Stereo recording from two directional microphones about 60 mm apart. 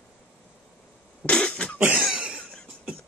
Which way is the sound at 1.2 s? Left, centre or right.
Centre.